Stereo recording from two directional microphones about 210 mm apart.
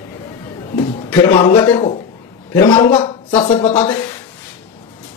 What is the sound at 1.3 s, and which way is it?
A man's voice, 20° left (ahead or behind).